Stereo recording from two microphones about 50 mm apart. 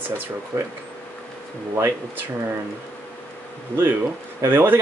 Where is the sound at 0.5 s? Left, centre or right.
Right.